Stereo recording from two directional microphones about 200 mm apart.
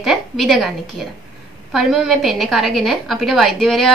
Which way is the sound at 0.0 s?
Centre (ahead or behind).